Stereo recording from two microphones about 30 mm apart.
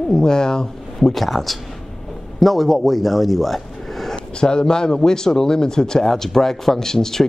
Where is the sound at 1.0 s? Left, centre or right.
Centre.